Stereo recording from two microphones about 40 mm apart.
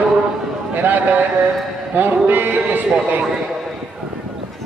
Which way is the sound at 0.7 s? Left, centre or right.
Right.